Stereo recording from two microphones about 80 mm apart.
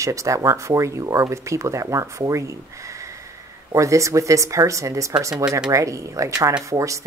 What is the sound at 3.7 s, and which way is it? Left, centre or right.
Speech, right.